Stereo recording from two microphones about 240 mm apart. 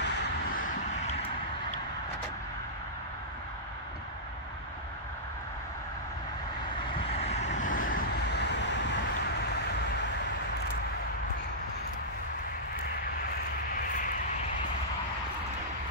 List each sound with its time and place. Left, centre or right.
0.0 s a sound: left
7.2 s vehicle: left
7.9 s vehicle: left